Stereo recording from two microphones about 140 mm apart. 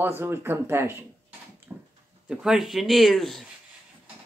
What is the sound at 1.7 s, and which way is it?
Dog, 15° right (ahead or behind).